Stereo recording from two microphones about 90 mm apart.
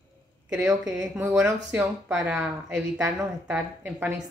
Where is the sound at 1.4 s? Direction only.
20° right (ahead or behind).